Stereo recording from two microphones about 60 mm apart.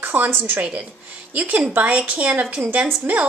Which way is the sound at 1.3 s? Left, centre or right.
Right.